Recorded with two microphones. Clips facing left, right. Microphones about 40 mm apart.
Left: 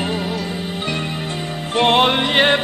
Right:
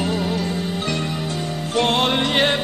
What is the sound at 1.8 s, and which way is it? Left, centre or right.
Music, left.